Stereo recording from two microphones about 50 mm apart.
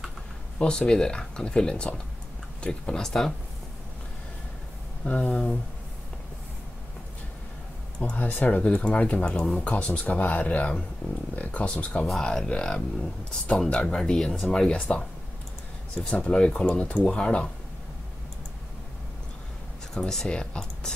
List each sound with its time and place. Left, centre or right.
0.6 s speech: centre
5.0 s speech: left
8.0 s speech: left
12.1 s speech: centre
14.8 s speech: left
20.2 s speech: centre